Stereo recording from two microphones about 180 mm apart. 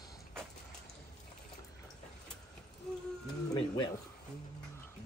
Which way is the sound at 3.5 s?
25° left (ahead or behind).